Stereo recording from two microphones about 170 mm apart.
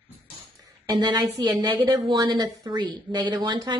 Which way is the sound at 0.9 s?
25° right (ahead or behind).